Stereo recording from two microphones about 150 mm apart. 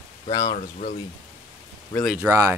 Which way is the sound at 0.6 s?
60° left (ahead or behind).